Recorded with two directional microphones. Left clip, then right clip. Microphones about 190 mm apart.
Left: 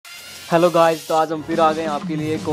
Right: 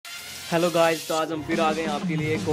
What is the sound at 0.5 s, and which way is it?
Speech, 20° left (ahead or behind).